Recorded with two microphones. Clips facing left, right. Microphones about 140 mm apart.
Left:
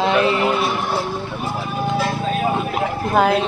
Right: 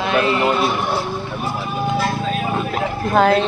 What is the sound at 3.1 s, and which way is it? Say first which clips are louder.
Speech: right 2 dB; 10° left (ahead or behind).